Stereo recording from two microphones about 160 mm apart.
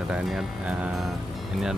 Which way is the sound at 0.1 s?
Centre (ahead or behind).